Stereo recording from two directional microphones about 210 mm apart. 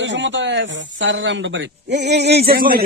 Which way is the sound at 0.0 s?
60° right (ahead or behind).